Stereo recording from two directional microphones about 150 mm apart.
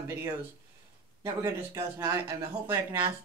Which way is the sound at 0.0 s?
20° right (ahead or behind).